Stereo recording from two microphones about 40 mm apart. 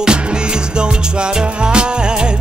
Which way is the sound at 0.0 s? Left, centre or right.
Right.